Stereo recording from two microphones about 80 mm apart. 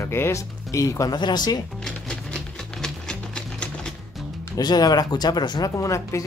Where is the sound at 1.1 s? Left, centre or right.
Left.